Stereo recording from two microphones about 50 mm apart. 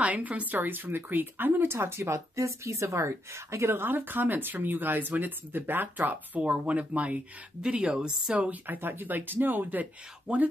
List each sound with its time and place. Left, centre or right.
0.0 s a woman's voice: right
2.1 s a woman's voice: right
6.4 s speech: right
7.6 s speech: centre
8.5 s speech: right
10.3 s speech: right